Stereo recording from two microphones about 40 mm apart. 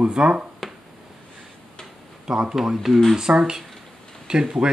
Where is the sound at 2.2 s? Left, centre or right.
Centre.